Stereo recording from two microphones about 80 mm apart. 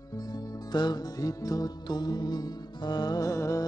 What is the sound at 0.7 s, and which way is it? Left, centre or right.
Music, left.